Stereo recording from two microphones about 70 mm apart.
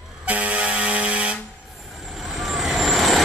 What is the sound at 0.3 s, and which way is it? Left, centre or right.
Air horn, right.